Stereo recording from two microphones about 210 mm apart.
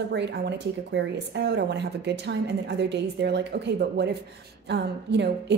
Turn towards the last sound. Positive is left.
turn(degrees=-55)  # may be behind; listen again after turning